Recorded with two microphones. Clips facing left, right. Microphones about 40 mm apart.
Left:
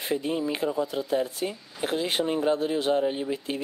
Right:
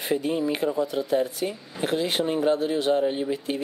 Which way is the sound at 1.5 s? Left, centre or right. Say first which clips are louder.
Right 3 dB; right.